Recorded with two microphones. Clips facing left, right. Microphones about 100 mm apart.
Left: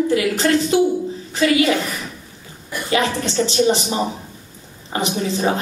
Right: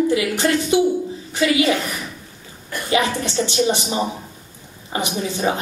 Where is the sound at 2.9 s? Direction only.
20° right (ahead or behind).